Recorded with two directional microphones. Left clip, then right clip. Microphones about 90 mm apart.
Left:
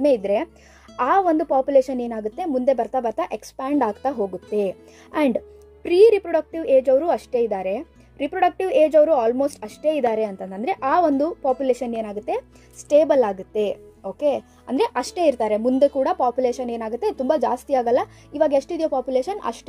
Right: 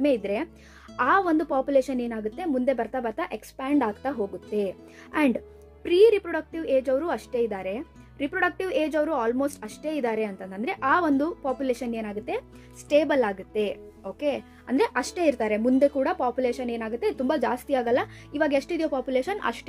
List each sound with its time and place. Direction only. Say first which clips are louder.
0.0 s a woman's voice: left 6 dB; 35° left (ahead or behind)
4.1 s speech: left 5 dB; centre (ahead or behind)
5.1 s a woman's voice: left 4 dB; 30° left (ahead or behind)
14.7 s a woman's voice: left 3 dB; 25° left (ahead or behind)